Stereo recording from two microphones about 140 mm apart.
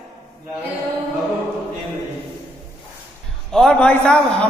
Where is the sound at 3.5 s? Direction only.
5° left (ahead or behind).